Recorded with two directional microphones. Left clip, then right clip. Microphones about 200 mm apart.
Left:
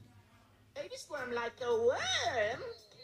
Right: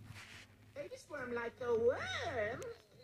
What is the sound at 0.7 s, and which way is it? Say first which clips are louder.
Speech: left 4 dB; centre (ahead or behind).